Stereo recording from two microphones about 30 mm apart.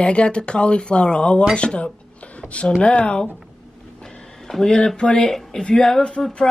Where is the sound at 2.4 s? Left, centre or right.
Left.